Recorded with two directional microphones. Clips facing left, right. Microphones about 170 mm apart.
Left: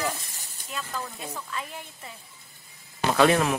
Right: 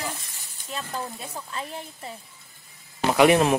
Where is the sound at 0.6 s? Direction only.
40° right (ahead or behind).